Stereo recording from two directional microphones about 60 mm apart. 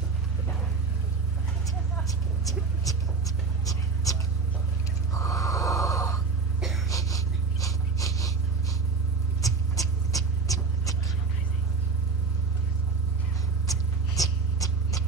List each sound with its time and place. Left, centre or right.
2.0 s vehicle: left
5.1 s snort: left
9.4 s a sound: left
13.7 s mouse: left